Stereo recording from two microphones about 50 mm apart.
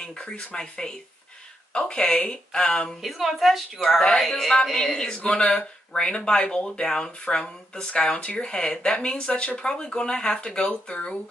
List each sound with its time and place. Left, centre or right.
0.0 s speech: centre
3.0 s a woman's voice: centre; by 11.1 s left